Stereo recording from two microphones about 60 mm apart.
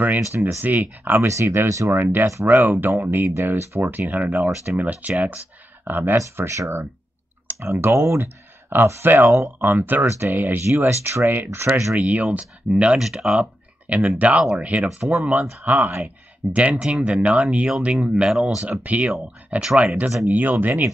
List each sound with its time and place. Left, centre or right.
0.2 s speech: right
0.6 s speech: right
1.1 s speech: right
1.7 s speech: right
2.4 s speech: right
6.3 s speech: right
10.0 s speech: right
10.3 s speech: right
11.2 s speech: right
11.9 s speech: right
16.5 s speech: right; by 18.6 s centre
18.6 s speech: right